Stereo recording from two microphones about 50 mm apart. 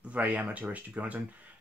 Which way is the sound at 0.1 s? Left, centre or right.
Right.